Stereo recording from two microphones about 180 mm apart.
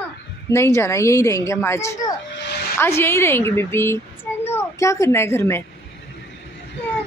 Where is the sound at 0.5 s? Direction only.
15° left (ahead or behind).